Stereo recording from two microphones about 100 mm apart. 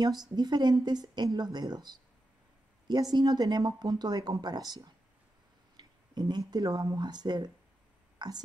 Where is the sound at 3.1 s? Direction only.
45° right (ahead or behind).